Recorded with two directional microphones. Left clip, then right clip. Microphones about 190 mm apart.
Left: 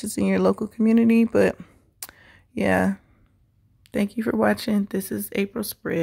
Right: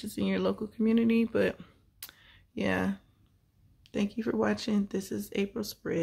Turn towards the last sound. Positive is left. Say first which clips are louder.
# left 6 dB
turn(degrees=30)  # may be behind; listen again after turning